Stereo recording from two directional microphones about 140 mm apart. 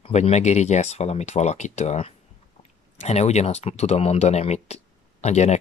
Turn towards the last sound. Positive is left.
turn(degrees=55)  # may be behind; listen again after turning